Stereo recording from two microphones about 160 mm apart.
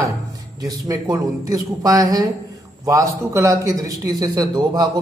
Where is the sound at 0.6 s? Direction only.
25° right (ahead or behind).